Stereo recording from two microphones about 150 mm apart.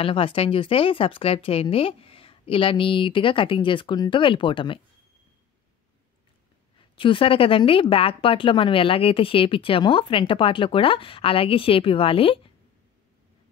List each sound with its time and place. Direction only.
0.0 s speech: 35° left (ahead or behind)
7.0 s speech: 35° left (ahead or behind)